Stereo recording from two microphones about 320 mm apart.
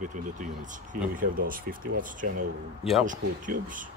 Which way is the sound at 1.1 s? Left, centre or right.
Right.